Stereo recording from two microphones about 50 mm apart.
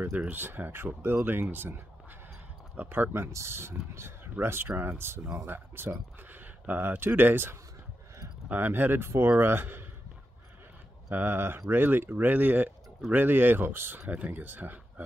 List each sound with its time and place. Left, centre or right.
0.3 s speech: right
2.8 s speech: right
3.1 s speech: right
6.3 s a sound: right
7.0 s speech: right
11.1 s speech: right